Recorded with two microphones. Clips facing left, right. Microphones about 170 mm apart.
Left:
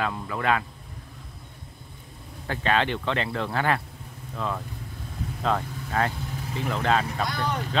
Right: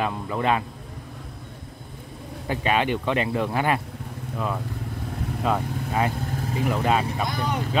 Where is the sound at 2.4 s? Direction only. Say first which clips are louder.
Right 2 dB; 15° right (ahead or behind).